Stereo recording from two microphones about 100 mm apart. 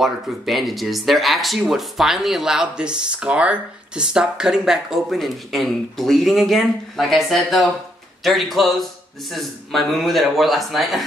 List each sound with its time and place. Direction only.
0.0 s speech: centre (ahead or behind)